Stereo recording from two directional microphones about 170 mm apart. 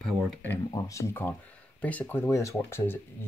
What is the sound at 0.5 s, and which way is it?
Speech, 20° left (ahead or behind).